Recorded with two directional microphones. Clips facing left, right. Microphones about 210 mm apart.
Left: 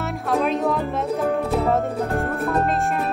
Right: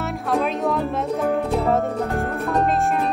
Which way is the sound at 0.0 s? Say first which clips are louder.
Even; centre (ahead or behind).